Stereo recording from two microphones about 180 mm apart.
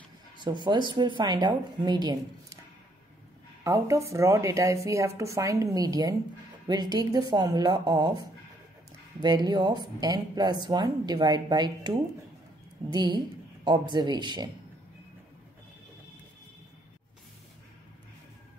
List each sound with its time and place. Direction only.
0.4 s speech: 25° right (ahead or behind)
3.6 s speech: 15° right (ahead or behind)
9.2 s speech: 25° right (ahead or behind)